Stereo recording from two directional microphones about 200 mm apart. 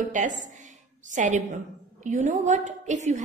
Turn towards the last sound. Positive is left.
turn(degrees=-35)  # may be behind; listen again after turning